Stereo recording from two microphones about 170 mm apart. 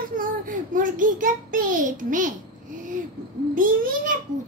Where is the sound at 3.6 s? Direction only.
55° right (ahead or behind).